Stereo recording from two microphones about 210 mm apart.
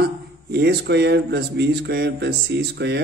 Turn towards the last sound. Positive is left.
turn(degrees=-50)  # may be behind; listen again after turning